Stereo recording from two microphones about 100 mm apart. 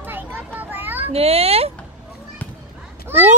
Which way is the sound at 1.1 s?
80° right.